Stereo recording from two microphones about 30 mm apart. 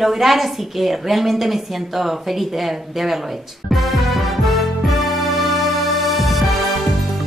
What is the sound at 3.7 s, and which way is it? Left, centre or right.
Music, centre.